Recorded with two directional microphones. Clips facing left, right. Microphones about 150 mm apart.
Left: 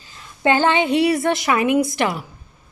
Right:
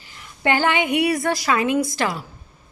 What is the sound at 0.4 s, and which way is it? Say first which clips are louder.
A woman's voice: left 3 dB; 20° left (ahead or behind).